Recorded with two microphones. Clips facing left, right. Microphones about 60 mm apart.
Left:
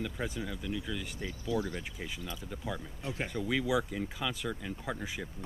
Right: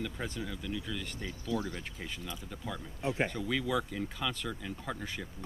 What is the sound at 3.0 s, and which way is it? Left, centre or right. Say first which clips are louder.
Speech: right 6 dB; right.